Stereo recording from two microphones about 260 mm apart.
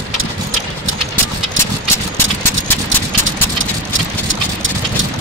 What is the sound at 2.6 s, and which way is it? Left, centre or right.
Engine, right.